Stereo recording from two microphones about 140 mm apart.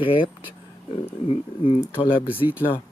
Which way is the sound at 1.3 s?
40° left (ahead or behind).